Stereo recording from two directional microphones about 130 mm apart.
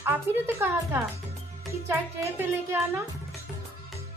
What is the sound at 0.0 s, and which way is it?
A woman's voice, 20° right (ahead or behind).